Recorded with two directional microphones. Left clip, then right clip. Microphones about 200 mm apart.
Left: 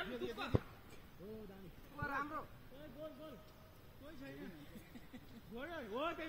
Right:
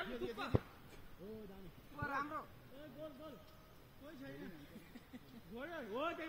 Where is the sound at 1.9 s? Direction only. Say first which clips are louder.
Even; 20° right (ahead or behind).